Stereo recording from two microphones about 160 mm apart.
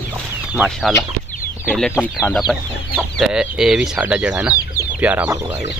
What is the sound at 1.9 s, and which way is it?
Speech, 15° left (ahead or behind).